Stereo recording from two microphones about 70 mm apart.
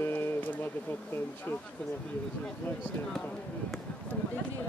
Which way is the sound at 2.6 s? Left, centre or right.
Left.